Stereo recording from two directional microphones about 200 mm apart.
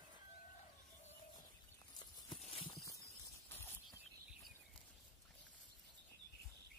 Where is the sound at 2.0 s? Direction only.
25° left (ahead or behind).